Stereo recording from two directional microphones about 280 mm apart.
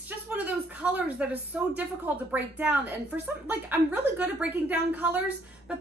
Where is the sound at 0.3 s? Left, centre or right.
Centre.